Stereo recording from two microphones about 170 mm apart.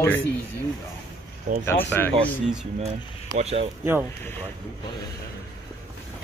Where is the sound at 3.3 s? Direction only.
40° right (ahead or behind).